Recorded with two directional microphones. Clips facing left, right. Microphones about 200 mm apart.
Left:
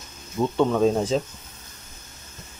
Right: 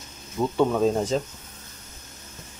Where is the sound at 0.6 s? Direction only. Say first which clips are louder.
Left 1 dB; 5° right (ahead or behind).